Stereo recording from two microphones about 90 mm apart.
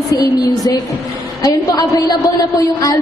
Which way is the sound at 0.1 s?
45° left (ahead or behind).